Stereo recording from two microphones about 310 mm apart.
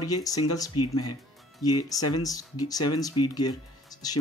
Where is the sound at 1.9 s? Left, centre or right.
Left.